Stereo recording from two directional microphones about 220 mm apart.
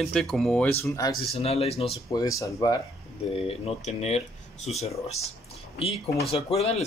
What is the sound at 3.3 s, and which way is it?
Speech, 25° left (ahead or behind).